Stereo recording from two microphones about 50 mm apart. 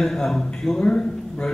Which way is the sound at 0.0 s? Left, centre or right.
Centre.